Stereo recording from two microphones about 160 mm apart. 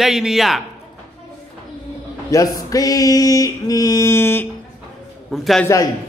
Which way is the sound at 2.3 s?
20° left (ahead or behind).